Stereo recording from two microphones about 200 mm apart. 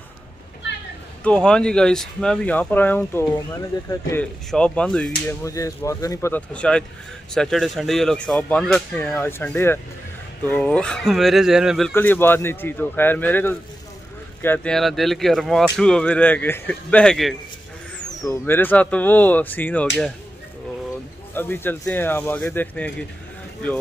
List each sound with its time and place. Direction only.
1.2 s speech: 5° left (ahead or behind)
5.4 s a man's voice: 15° left (ahead or behind); by 11.9 s centre (ahead or behind)
11.9 s a man's voice: 10° left (ahead or behind)
18.2 s a man's voice: 15° left (ahead or behind)
21.4 s a man's voice: 10° left (ahead or behind)